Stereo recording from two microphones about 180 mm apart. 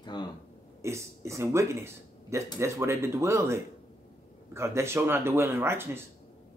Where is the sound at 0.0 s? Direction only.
25° left (ahead or behind).